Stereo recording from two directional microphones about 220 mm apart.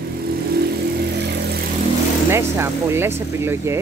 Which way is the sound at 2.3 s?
10° right (ahead or behind).